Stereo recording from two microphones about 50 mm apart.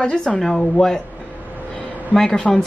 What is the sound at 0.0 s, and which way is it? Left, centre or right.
A woman's voice, centre.